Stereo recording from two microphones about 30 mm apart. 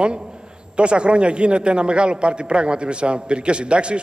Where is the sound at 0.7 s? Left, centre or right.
Right.